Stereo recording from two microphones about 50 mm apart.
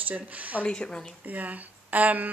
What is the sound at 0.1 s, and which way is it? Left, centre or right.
Speech, right.